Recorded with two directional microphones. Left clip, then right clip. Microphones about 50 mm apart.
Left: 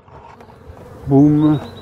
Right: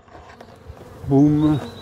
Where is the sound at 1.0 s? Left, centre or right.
Centre.